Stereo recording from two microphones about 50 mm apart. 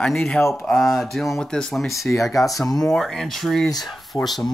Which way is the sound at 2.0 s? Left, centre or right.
Left.